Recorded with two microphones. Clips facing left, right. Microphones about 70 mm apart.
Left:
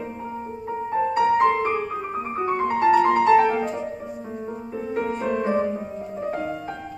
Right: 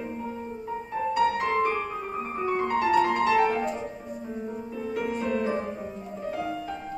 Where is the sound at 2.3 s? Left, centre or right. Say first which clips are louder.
Left 4 dB; left.